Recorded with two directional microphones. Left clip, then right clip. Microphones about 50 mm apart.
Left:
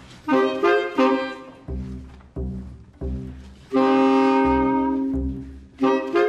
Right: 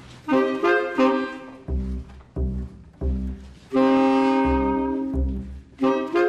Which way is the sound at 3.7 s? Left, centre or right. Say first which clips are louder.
Left 1 dB; left.